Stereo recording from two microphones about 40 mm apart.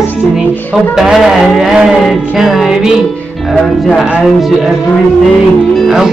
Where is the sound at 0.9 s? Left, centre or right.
Centre.